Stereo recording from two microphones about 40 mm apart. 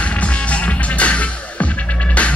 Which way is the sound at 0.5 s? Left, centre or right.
Left.